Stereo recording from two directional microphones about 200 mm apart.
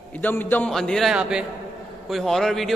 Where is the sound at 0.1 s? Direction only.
10° left (ahead or behind).